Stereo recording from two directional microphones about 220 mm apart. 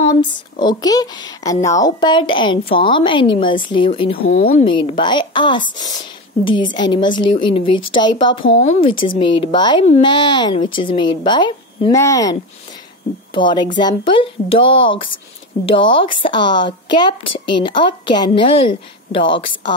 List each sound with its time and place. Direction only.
0.6 s a woman's voice: 20° left (ahead or behind)
4.2 s speech: 40° left (ahead or behind)
4.9 s a woman's voice: 20° left (ahead or behind)